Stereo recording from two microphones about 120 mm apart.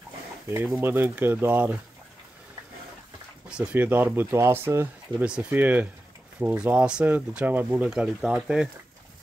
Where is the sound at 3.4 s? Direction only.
10° right (ahead or behind).